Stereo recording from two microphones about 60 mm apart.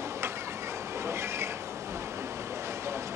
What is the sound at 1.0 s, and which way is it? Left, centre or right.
Train, right.